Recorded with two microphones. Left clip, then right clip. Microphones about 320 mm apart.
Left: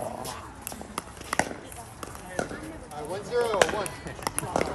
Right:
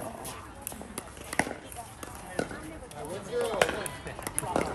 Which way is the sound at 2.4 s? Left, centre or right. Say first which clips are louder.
Left 2 dB; left.